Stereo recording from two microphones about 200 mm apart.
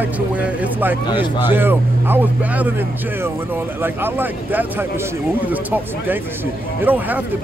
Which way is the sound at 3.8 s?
10° right (ahead or behind).